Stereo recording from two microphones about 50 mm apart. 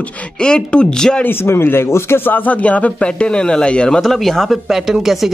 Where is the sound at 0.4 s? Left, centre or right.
Centre.